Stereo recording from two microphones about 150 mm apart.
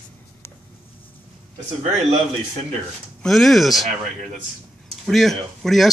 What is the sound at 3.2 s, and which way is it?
Speech, centre (ahead or behind).